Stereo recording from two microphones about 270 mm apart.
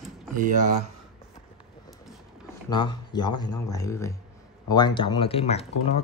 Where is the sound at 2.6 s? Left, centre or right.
Centre.